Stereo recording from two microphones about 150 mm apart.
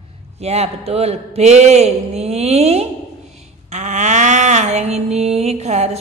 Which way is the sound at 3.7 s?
50° right (ahead or behind).